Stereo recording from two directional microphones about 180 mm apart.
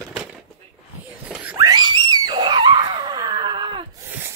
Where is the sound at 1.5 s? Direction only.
20° right (ahead or behind).